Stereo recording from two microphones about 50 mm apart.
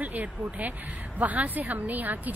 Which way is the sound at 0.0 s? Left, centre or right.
Right.